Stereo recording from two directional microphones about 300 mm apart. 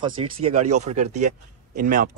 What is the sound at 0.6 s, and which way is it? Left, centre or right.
Speech, right.